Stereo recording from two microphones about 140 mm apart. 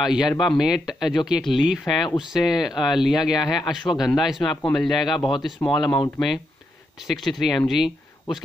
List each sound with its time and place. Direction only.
0.0 s speech: 5° right (ahead or behind)